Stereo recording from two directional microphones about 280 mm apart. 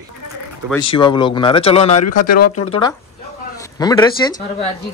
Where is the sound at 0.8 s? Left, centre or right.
Centre.